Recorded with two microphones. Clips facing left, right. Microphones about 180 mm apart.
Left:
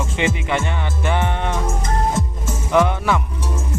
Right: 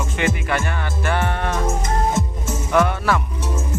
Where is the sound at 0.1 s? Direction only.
25° left (ahead or behind).